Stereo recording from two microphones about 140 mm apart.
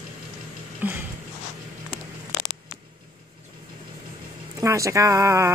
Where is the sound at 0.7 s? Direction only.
15° right (ahead or behind).